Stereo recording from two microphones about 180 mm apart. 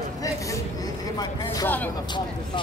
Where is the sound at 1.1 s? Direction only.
20° left (ahead or behind).